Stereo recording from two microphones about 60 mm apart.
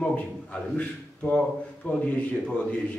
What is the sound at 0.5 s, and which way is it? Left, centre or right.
A man's voice, left.